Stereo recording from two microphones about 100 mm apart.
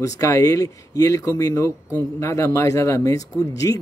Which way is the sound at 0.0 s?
35° left (ahead or behind).